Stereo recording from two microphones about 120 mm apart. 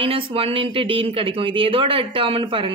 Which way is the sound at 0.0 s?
50° right (ahead or behind).